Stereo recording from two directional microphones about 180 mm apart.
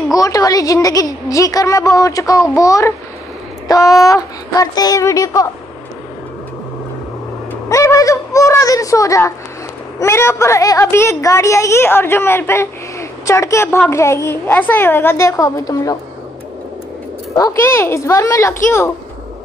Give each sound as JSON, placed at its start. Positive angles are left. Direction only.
{"t": 0.1, "sound": "a woman's voice", "side_deg": 20}
{"t": 7.7, "sound": "a woman's voice", "side_deg": 15}
{"t": 17.7, "sound": "a woman's voice", "side_deg": 15}